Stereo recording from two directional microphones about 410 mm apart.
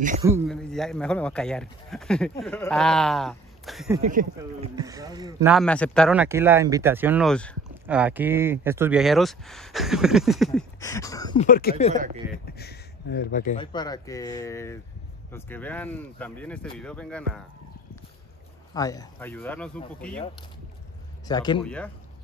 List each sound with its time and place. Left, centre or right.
0.2 s speech: centre
4.0 s speech: centre
4.4 s speech: centre
11.9 s speech: centre
12.4 s speech: left; by 17.4 s centre
18.7 s speech: centre
21.3 s speech: centre